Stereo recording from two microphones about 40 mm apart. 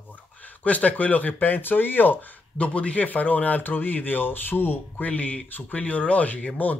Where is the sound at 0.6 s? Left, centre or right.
Left.